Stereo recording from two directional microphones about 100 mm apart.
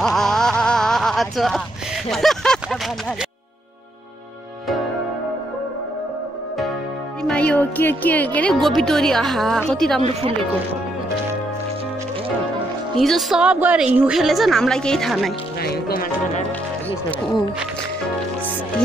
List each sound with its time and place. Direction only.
0.0 s a sound: 5° left (ahead or behind)
7.3 s speech: 15° left (ahead or behind)
8.5 s a woman's voice: centre (ahead or behind)
10.0 s speech: 90° right
12.9 s a woman's voice: centre (ahead or behind)
13.4 s a woman's voice: 15° right (ahead or behind); by 15.3 s centre (ahead or behind)